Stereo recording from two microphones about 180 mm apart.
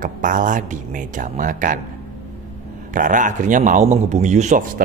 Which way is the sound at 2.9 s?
45° right (ahead or behind).